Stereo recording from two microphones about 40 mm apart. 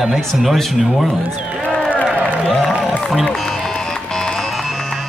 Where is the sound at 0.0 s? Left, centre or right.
Centre.